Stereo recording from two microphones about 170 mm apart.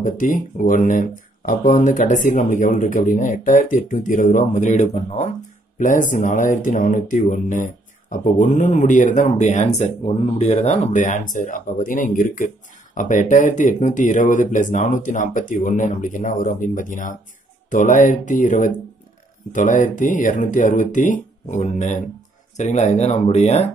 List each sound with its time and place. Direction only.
0.0 s speech: 50° left (ahead or behind)